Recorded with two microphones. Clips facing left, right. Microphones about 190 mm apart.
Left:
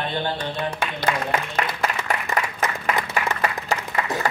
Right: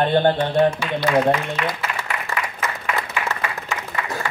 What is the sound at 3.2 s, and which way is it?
Applause, 40° left (ahead or behind).